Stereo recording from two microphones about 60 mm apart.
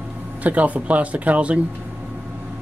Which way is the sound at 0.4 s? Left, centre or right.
Right.